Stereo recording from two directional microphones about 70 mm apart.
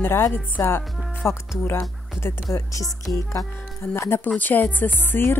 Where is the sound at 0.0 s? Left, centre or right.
Left.